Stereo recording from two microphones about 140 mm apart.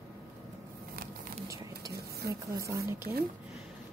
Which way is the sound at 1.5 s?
25° right (ahead or behind).